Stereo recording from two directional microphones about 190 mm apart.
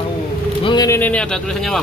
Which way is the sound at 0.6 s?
20° left (ahead or behind).